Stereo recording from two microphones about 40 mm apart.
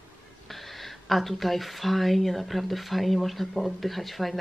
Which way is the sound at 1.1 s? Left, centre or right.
Centre.